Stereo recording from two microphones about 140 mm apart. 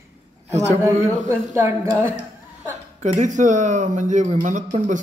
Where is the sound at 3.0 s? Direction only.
60° right (ahead or behind).